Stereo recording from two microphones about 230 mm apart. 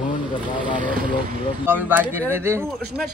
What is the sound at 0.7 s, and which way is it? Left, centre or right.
Speech, right.